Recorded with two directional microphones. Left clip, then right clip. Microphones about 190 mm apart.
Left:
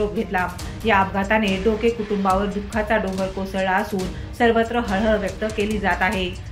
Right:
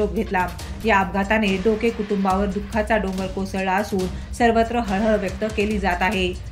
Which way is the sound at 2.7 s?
45° right (ahead or behind).